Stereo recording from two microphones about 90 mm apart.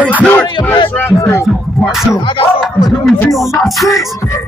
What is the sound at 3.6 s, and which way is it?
Speech, centre (ahead or behind).